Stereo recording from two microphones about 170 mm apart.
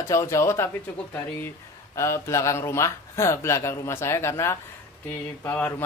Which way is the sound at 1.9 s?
15° left (ahead or behind).